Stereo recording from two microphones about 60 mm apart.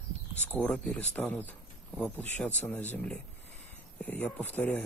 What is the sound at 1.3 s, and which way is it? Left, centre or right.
Speech, left.